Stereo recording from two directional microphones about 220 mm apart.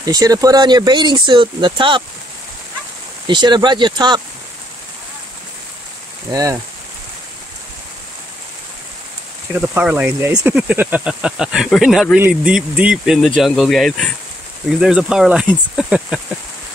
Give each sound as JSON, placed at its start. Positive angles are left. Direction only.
{"t": 0.0, "sound": "speech", "side_deg": -15}
{"t": 3.3, "sound": "speech", "side_deg": -20}
{"t": 6.3, "sound": "speech", "side_deg": -15}
{"t": 9.5, "sound": "speech", "side_deg": -5}